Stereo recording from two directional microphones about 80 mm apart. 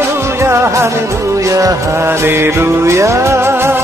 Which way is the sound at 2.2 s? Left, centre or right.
Right.